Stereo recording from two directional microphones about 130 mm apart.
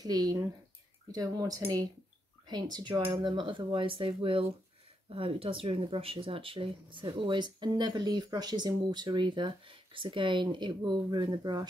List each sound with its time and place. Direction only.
0.0 s speech: 30° right (ahead or behind)